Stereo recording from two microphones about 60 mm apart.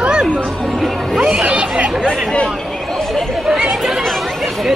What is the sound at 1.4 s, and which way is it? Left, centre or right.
Chatter, centre.